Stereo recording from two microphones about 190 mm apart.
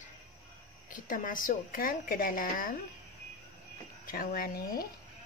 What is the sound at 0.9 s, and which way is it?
A woman's voice, 45° left (ahead or behind).